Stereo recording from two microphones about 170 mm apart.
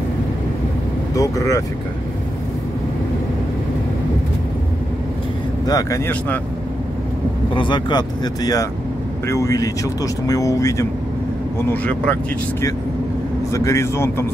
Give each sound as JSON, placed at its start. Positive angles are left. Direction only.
{"t": 1.1, "sound": "speech", "side_deg": 20}
{"t": 5.7, "sound": "speech", "side_deg": 20}
{"t": 7.5, "sound": "speech", "side_deg": 30}
{"t": 13.5, "sound": "speech", "side_deg": 15}